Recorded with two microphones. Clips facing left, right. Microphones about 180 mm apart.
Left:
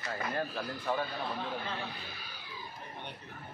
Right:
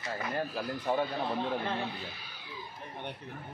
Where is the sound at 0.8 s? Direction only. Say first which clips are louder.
Right 3 dB; 20° right (ahead or behind).